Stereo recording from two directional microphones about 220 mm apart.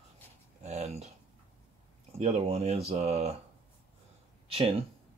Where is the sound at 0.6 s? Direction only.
30° right (ahead or behind).